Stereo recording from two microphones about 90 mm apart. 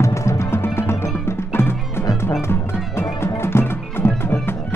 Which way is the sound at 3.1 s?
25° left (ahead or behind).